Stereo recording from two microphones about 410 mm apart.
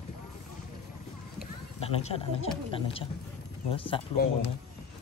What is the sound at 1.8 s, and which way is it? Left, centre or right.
Speech, centre.